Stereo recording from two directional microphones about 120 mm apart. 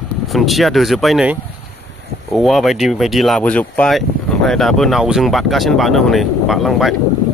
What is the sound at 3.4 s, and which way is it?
Speech, 10° left (ahead or behind).